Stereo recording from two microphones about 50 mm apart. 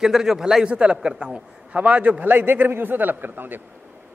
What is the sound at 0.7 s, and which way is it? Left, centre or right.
A man's voice, right.